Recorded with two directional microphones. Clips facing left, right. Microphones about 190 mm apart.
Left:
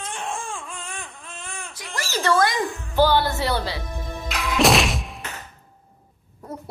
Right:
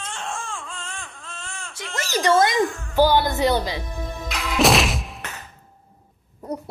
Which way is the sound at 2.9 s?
15° right (ahead or behind).